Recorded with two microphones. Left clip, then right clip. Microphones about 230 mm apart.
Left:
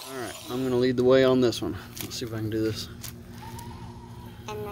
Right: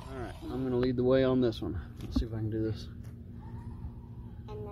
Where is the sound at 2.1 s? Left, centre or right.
Centre.